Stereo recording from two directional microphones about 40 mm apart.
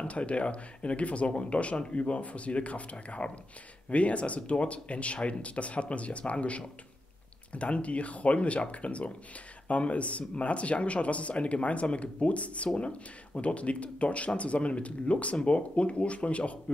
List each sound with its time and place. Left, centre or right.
0.0 s speech: left